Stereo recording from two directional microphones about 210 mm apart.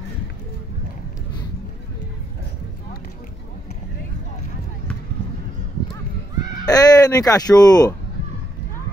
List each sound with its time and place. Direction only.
6.6 s speech: 15° left (ahead or behind)